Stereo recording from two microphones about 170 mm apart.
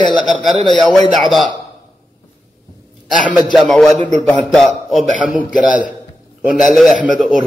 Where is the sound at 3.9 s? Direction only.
40° right (ahead or behind).